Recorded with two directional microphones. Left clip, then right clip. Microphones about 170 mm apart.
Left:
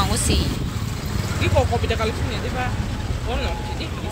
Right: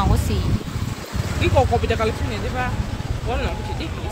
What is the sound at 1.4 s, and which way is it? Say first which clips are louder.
Speech: right 3 dB; 65° right (ahead or behind).